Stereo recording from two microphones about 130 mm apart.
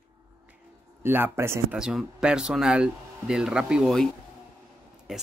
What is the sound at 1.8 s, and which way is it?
Speech, 5° right (ahead or behind).